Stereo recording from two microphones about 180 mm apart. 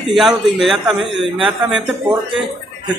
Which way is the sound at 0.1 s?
Centre (ahead or behind).